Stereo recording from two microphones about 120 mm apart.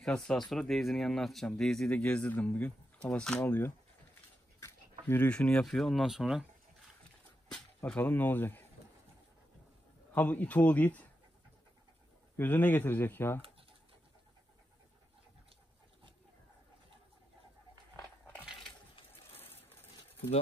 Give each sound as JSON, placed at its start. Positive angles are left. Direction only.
{"t": 0.0, "sound": "speech", "side_deg": 5}
{"t": 7.5, "sound": "a sound", "side_deg": 5}
{"t": 8.0, "sound": "speech", "side_deg": 15}
{"t": 10.1, "sound": "speech", "side_deg": 15}
{"t": 12.4, "sound": "speech", "side_deg": 15}
{"t": 18.6, "sound": "a sound", "side_deg": 50}